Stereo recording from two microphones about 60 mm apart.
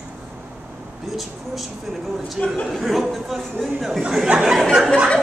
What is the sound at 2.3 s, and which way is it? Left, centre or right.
Speech, centre.